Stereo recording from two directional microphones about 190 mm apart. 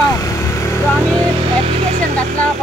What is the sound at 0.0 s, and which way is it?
Vehicle, 15° left (ahead or behind).